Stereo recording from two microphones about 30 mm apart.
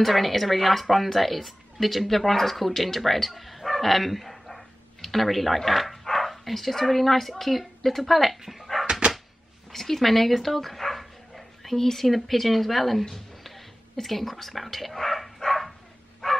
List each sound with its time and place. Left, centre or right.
0.0 s speech: centre
9.7 s speech: centre
16.2 s bow-wow: centre